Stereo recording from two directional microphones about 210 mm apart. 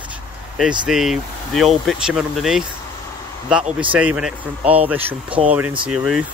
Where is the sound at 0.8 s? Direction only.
Centre (ahead or behind).